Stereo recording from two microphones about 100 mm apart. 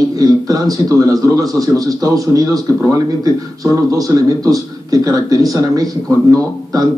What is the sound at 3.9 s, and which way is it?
A man's voice, 35° right (ahead or behind).